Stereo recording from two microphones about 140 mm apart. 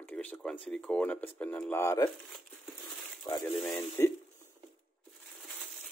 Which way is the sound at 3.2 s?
25° left (ahead or behind).